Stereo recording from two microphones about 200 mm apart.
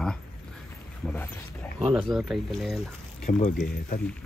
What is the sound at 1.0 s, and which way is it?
Speech, 10° left (ahead or behind).